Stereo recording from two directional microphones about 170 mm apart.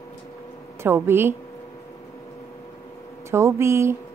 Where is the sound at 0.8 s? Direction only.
15° right (ahead or behind).